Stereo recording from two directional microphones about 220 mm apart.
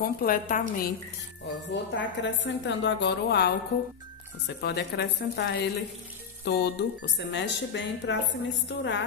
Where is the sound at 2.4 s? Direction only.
55° left (ahead or behind).